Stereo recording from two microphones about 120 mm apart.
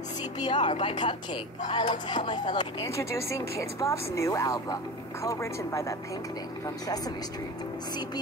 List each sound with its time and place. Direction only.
0.4 s a woman's voice: 40° left (ahead or behind)
2.9 s speech: 25° left (ahead or behind)